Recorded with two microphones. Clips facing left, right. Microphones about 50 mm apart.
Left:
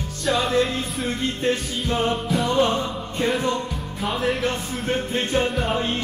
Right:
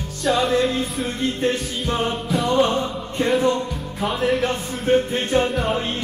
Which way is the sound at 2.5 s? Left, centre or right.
Right.